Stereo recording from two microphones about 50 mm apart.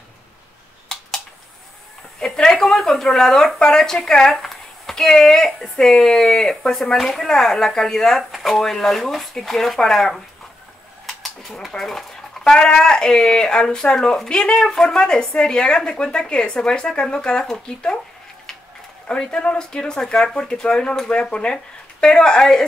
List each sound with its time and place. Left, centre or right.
2.1 s a woman's voice: centre
8.2 s speech: centre
11.1 s a sound: centre
12.5 s a woman's voice: centre
19.0 s a woman's voice: centre